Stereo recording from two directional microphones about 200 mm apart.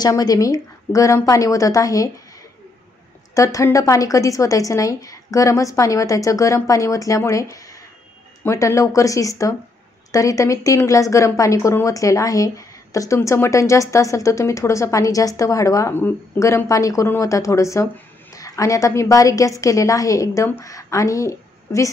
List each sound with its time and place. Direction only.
0.0 s a woman's voice: 20° left (ahead or behind)
3.3 s a woman's voice: 15° left (ahead or behind)